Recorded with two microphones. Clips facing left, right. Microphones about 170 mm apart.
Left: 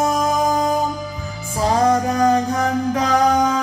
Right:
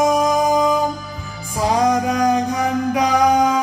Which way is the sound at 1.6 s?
15° right (ahead or behind).